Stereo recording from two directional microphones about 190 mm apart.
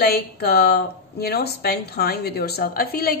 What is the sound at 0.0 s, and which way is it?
Speech, 55° left (ahead or behind).